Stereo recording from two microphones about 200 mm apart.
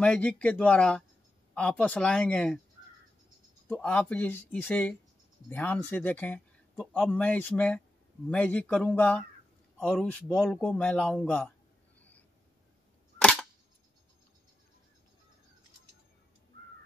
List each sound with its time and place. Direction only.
0.0 s speech: 5° left (ahead or behind)
3.6 s speech: 10° left (ahead or behind)
13.2 s single-lens reflex camera: centre (ahead or behind)
16.5 s crow: 60° right (ahead or behind)